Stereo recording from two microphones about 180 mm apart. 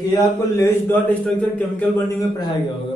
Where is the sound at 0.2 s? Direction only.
15° left (ahead or behind).